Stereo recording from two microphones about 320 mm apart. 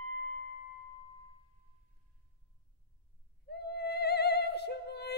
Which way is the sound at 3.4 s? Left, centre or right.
Left.